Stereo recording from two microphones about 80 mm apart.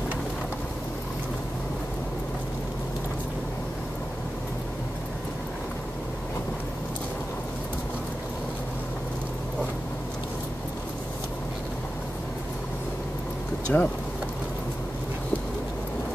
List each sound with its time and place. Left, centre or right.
13.7 s speech: left